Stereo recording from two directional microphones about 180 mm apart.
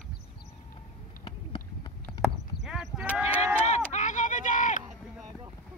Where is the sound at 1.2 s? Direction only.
25° left (ahead or behind).